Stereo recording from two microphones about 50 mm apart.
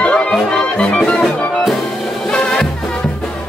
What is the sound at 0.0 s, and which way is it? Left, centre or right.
Music, left.